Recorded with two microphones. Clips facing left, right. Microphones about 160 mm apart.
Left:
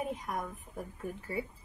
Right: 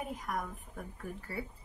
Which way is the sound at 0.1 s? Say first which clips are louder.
Left 1 dB; 25° left (ahead or behind).